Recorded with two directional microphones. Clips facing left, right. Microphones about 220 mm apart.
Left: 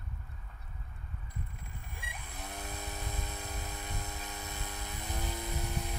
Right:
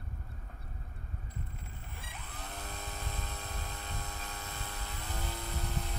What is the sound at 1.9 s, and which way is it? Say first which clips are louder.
Vehicle: left 2 dB; 15° left (ahead or behind).